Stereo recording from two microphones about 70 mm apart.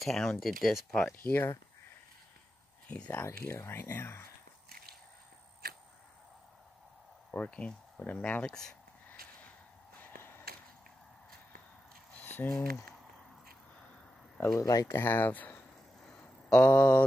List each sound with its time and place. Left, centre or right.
0.0 s speech: centre
1.1 s speech: left
3.1 s speech: left
7.2 s speech: centre
9.9 s a sound: left
12.2 s a sound: left
12.4 s speech: left
14.4 s speech: left
14.9 s speech: left
16.1 s mantra: centre